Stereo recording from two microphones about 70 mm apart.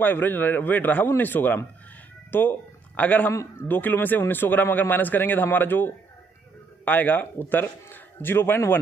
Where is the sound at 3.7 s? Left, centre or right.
Left.